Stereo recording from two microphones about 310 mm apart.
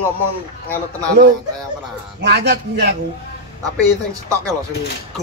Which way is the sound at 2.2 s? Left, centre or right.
Right.